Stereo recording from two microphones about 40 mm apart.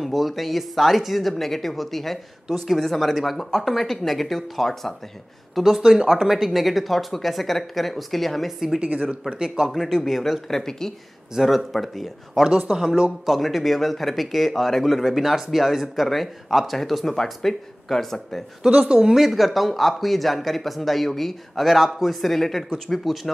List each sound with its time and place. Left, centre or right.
0.0 s speech: centre
5.5 s speech: centre
10.6 s speech: centre
11.3 s speech: centre
12.4 s a woman's voice: right
13.3 s speech: centre
18.9 s speech: centre
19.1 s speech: centre